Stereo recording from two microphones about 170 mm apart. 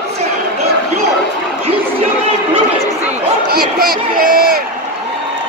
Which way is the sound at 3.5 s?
60° right (ahead or behind).